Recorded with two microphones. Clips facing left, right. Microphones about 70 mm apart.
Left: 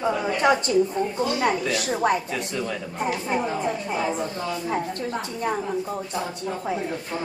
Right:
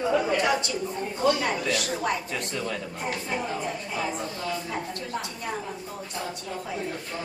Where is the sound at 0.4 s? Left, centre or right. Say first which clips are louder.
Left 6 dB; left.